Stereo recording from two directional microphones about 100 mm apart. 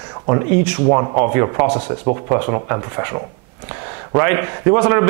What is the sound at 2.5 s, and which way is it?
A man's voice, 25° right (ahead or behind).